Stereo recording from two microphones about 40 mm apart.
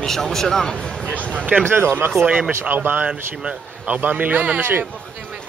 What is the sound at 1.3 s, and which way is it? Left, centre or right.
Speech, right.